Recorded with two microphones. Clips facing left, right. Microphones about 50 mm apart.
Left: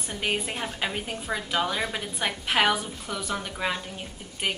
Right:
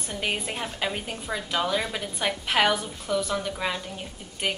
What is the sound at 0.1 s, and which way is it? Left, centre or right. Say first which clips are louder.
A woman's voice: left 1 dB; centre.